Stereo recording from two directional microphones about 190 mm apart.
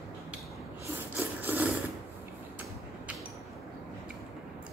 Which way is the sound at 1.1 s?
10° right (ahead or behind).